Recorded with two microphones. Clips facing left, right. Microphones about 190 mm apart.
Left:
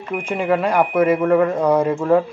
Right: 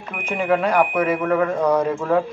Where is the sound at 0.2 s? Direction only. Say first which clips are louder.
Even; 5° left (ahead or behind).